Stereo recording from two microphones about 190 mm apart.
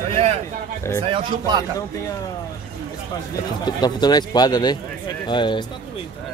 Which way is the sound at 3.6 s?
20° left (ahead or behind).